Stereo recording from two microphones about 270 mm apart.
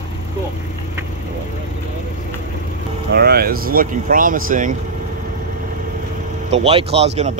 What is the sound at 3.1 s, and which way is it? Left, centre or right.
Speech, right.